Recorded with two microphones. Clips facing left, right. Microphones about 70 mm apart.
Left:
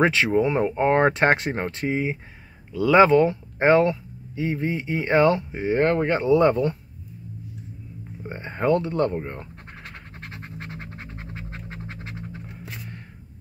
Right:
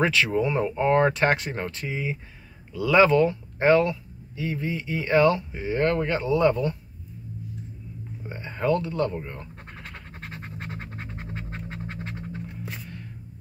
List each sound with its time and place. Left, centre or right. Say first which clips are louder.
0.0 s speech: left 3 dB; left
8.2 s speech: left 2 dB; left
9.8 s scratch: even; centre